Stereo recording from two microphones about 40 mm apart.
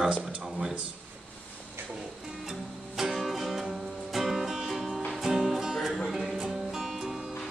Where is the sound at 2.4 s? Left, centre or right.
Centre.